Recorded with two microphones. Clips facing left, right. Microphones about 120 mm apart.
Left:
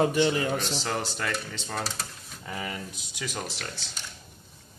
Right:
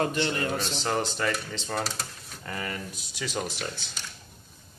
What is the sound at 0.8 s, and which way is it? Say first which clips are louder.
Speech: right 3 dB; centre (ahead or behind).